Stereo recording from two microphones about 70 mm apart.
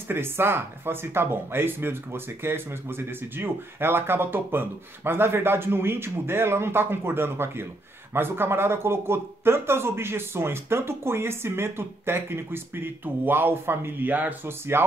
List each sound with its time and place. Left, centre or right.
0.1 s speech: right